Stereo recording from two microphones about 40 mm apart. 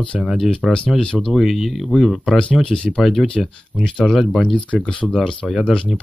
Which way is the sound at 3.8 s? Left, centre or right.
Centre.